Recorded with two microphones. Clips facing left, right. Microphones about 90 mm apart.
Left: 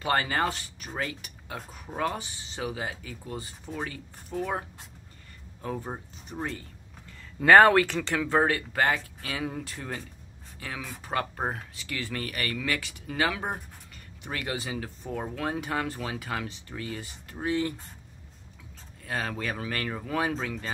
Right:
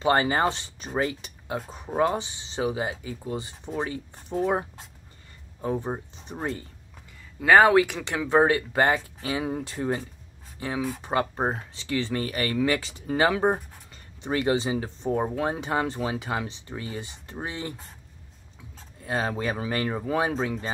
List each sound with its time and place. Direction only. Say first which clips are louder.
0.0 s speech: right 5 dB; 20° right (ahead or behind)
7.3 s speech: even; 5° right (ahead or behind); by 17.7 s 20° right (ahead or behind)
18.9 s speech: right 5 dB; 25° right (ahead or behind)